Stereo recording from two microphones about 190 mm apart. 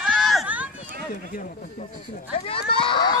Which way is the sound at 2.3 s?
30° left (ahead or behind).